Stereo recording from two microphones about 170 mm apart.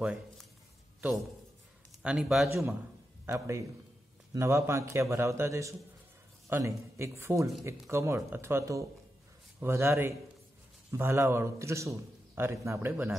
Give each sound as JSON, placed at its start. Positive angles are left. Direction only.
{"t": 0.0, "sound": "speech", "side_deg": -5}
{"t": 2.0, "sound": "speech", "side_deg": -5}
{"t": 3.3, "sound": "a man's voice", "side_deg": -15}